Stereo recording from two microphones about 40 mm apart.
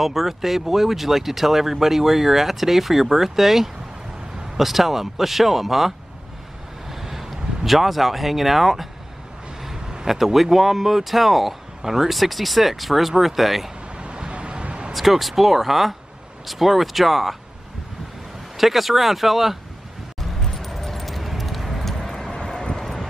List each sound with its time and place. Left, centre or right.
0.0 s speech: centre
6.9 s a sound: centre
10.0 s speech: centre
13.9 s vehicle: right
14.9 s speech: centre
18.6 s speech: centre
20.2 s keys jangling: centre
22.2 s vehicle: centre
22.8 s vehicle: centre